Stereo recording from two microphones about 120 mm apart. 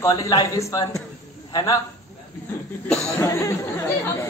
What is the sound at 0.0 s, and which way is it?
A man's voice, 30° left (ahead or behind).